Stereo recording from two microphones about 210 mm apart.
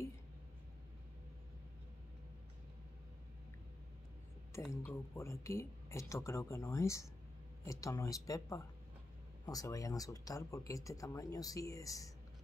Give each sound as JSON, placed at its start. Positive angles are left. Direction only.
{"t": 4.8, "sound": "speech", "side_deg": 15}